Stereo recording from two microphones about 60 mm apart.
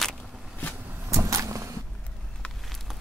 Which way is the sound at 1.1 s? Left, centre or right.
Right.